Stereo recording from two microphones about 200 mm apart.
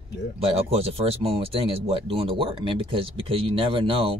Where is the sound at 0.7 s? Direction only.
30° right (ahead or behind).